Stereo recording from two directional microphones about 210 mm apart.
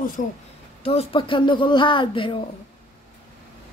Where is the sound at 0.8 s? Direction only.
25° left (ahead or behind).